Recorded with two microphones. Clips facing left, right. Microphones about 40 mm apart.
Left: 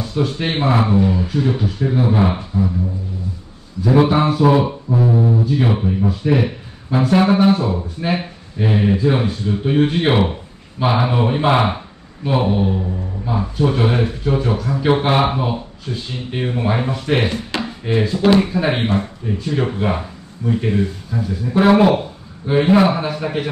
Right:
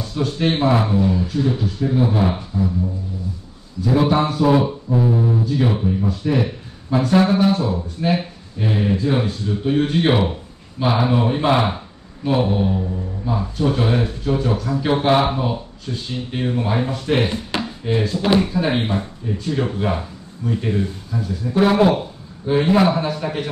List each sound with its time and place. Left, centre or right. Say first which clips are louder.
0.0 s speech: even; centre
4.1 s speech: left 2 dB; centre